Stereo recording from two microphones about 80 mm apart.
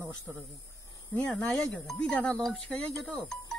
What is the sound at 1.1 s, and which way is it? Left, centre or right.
Speech, centre.